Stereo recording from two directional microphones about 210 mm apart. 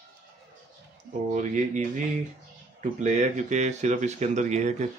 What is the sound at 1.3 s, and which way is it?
Speech, 35° right (ahead or behind).